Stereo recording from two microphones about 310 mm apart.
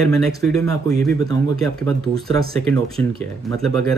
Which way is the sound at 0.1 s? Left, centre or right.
Centre.